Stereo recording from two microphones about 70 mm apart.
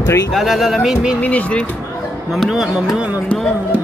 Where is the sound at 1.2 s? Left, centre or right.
Left.